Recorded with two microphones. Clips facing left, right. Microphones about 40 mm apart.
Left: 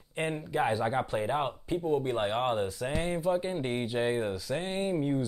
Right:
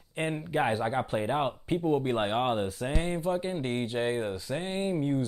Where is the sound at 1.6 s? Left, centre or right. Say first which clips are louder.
Right 2 dB; right.